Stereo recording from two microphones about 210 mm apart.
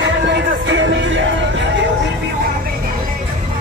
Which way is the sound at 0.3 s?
60° right (ahead or behind).